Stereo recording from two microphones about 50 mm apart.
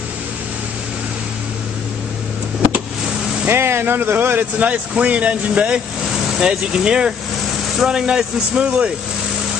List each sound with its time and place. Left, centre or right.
3.4 s speech: right
4.6 s speech: right